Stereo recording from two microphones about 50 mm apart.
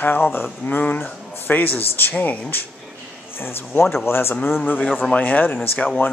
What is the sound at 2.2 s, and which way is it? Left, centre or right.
Speech, left.